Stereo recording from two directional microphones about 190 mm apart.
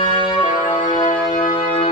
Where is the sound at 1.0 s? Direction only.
40° left (ahead or behind).